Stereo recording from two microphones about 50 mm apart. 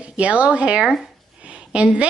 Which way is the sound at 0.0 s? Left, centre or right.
Right.